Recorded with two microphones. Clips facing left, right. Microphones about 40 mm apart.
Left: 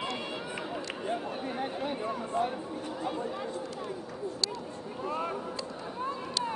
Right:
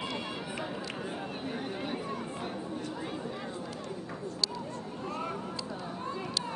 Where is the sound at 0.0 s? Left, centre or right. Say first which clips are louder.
Left 1 dB; centre.